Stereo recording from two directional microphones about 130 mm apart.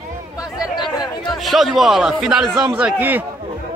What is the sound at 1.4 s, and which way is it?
A man's voice, centre (ahead or behind).